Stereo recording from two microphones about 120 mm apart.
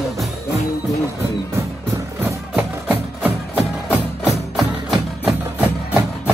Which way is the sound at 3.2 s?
15° right (ahead or behind).